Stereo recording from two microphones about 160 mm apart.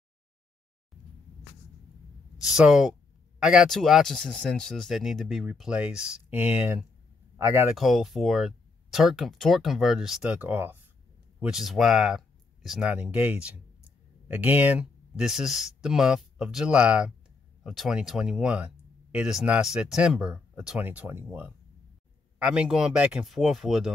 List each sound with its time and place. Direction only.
2.5 s speech: 5° right (ahead or behind); by 7.6 s 20° right (ahead or behind)
7.7 s speech: centre (ahead or behind)
11.3 s speech: centre (ahead or behind)